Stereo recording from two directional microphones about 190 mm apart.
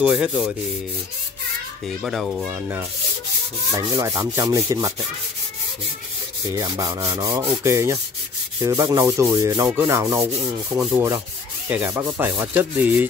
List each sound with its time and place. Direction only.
0.0 s rub: 5° right (ahead or behind)
2.0 s rub: centre (ahead or behind); by 4.9 s 20° right (ahead or behind)
6.5 s rub: 20° right (ahead or behind)